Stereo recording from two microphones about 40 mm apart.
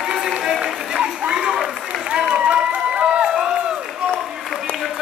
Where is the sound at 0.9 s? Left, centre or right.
Right.